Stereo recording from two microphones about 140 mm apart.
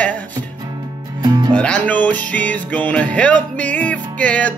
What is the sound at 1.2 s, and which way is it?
Music, 30° right (ahead or behind).